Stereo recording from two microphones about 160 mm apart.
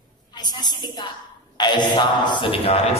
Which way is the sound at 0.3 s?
25° left (ahead or behind).